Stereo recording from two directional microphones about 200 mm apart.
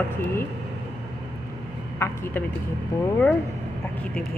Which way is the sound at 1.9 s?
10° left (ahead or behind).